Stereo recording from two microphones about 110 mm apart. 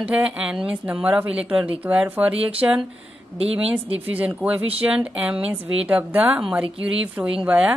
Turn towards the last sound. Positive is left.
turn(degrees=-10)  # may be behind; listen again after turning